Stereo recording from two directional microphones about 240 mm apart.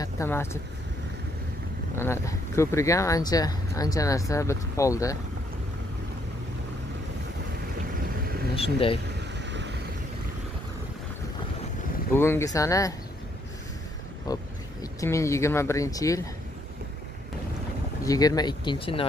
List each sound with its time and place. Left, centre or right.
0.0 s speech: centre
2.0 s speech: centre
8.5 s speech: left
9.4 s vehicle: right
12.1 s speech: centre
14.2 s speech: centre
18.0 s speech: centre